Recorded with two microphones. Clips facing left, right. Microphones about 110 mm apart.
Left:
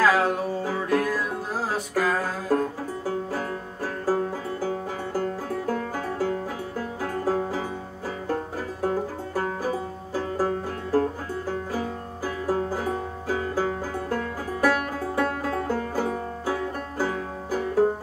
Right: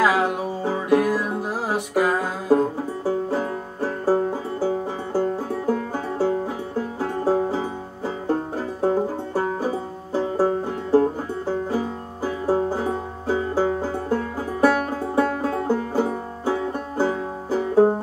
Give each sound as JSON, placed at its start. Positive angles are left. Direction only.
{"t": 0.0, "sound": "music", "side_deg": -15}
{"t": 3.1, "sound": "banjo", "side_deg": -25}
{"t": 7.0, "sound": "music", "side_deg": -25}
{"t": 8.3, "sound": "banjo", "side_deg": -25}